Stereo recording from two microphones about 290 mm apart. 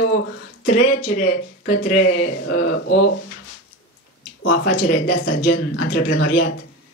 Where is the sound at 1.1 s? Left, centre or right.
Left.